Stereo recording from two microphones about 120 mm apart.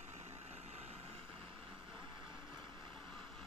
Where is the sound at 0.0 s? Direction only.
70° right (ahead or behind).